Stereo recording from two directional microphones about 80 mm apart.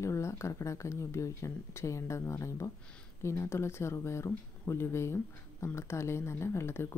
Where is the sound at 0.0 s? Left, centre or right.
Left.